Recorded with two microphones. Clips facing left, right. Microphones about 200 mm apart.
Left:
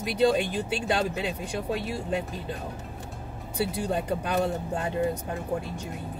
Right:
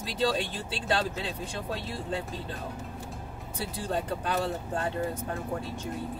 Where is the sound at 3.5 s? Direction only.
15° left (ahead or behind).